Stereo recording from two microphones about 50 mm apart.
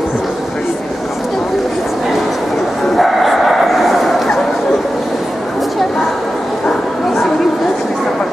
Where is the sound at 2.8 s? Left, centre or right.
Centre.